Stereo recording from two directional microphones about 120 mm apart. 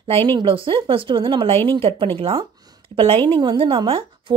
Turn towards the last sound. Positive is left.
turn(degrees=-45)  # may be behind; listen again after turning